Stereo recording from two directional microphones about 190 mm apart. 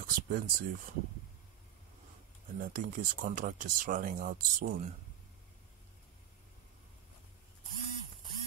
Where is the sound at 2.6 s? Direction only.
45° right (ahead or behind).